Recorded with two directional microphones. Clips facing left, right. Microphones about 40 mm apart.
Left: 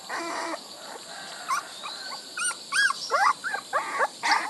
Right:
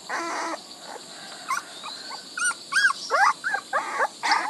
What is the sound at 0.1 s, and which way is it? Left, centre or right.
Dog, centre.